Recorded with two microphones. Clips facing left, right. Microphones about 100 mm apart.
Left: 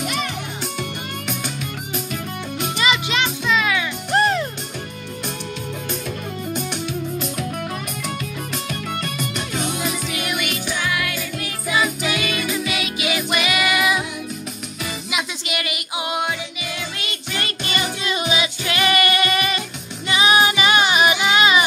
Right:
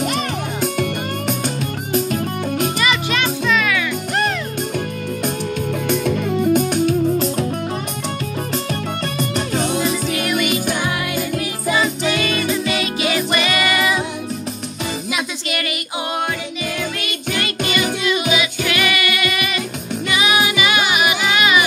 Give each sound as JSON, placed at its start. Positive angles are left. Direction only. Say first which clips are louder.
{"t": 0.0, "sound": "music", "louder": "right 4 dB", "side_deg": -45}
{"t": 2.8, "sound": "music", "louder": "right 1 dB", "side_deg": 20}
{"t": 4.1, "sound": "music", "louder": "left 4 dB", "side_deg": 30}
{"t": 5.9, "sound": "music", "louder": "right 12 dB", "side_deg": -65}
{"t": 6.6, "sound": "music", "louder": "right 10 dB", "side_deg": -45}
{"t": 9.0, "sound": "music", "louder": "right 5 dB", "side_deg": -35}
{"t": 12.1, "sound": "music", "louder": "right 4 dB", "side_deg": 10}
{"t": 18.0, "sound": "music", "louder": "right 3 dB", "side_deg": 35}
{"t": 18.9, "sound": "singing", "louder": "left 2 dB", "side_deg": 40}
{"t": 20.1, "sound": "music", "louder": "left 2 dB", "side_deg": 35}